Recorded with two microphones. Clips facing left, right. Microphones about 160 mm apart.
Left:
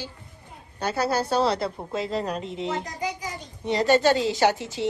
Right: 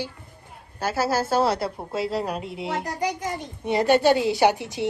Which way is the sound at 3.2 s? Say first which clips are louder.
Right 6 dB; 60° right (ahead or behind).